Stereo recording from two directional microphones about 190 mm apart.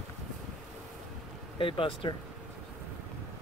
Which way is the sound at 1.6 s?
30° left (ahead or behind).